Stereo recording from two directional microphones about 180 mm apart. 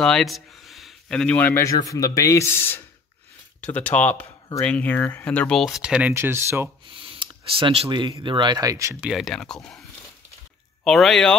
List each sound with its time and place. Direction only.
0.0 s speech: centre (ahead or behind); by 6.7 s 15° right (ahead or behind)
6.9 s speech: 30° right (ahead or behind)
9.0 s speech: centre (ahead or behind)
10.8 s speech: centre (ahead or behind)